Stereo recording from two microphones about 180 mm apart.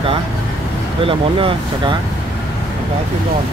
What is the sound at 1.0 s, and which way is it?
Speech, 30° right (ahead or behind).